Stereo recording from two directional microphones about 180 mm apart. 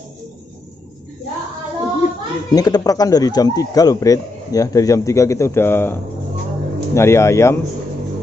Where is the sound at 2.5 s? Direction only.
20° left (ahead or behind).